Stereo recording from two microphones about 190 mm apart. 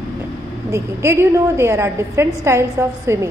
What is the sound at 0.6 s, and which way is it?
A woman's voice, 15° right (ahead or behind).